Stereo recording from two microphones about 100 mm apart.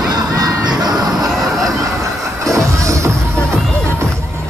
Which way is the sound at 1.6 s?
35° right (ahead or behind).